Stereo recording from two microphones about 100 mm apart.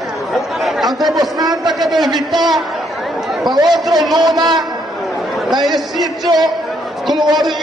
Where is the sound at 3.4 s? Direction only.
45° right (ahead or behind).